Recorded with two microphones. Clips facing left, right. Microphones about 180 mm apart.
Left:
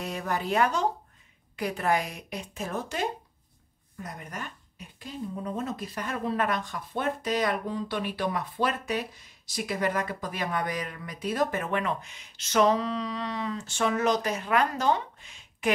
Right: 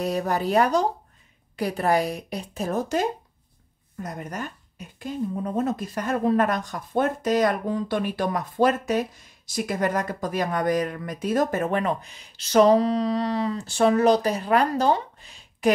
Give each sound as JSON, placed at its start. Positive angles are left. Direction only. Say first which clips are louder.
{"t": 0.0, "sound": "a woman's voice", "louder": "right 7 dB", "side_deg": -40}